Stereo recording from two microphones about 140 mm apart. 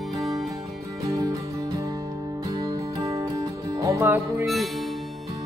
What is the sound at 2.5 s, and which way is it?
Music, 30° right (ahead or behind).